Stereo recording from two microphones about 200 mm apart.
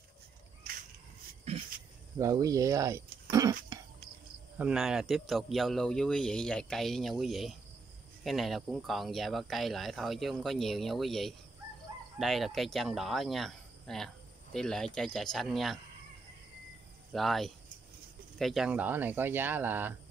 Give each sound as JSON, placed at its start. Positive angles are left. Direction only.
{"t": 2.1, "sound": "speech", "side_deg": -15}
{"t": 4.6, "sound": "speech", "side_deg": -5}
{"t": 17.1, "sound": "speech", "side_deg": 0}